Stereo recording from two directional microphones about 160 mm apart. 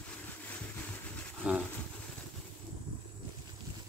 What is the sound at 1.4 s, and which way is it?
Speech, 10° right (ahead or behind).